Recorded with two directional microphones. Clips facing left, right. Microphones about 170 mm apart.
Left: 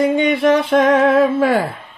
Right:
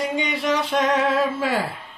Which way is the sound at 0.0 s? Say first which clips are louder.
Left 10 dB; 55° left (ahead or behind).